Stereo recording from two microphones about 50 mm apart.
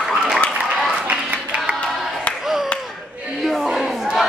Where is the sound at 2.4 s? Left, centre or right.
Centre.